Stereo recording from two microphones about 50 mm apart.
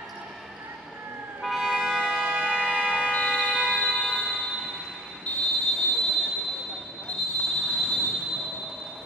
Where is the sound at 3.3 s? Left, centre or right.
Centre.